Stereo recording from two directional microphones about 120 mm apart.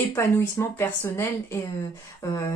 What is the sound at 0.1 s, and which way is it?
Speech, 20° left (ahead or behind).